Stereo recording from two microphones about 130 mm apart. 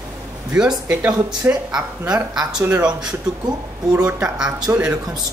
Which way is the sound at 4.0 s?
10° right (ahead or behind).